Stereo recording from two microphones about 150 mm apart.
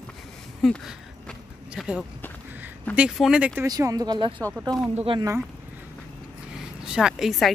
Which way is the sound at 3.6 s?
25° right (ahead or behind).